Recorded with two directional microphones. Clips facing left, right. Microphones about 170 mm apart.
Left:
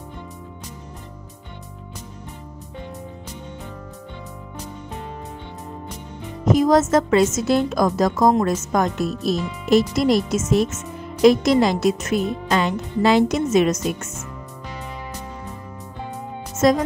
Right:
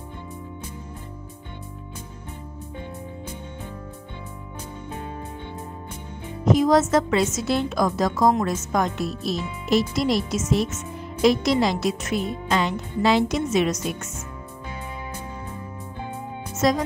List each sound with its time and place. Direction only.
6.4 s a woman's voice: 45° left (ahead or behind)
16.6 s a woman's voice: 50° left (ahead or behind)